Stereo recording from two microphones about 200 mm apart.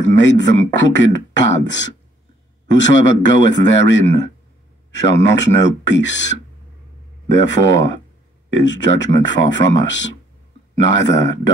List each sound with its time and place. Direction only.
0.0 s speech: 65° left (ahead or behind)
7.3 s speech: 60° left (ahead or behind)